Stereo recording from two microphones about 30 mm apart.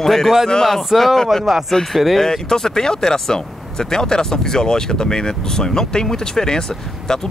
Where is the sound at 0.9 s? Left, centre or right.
Centre.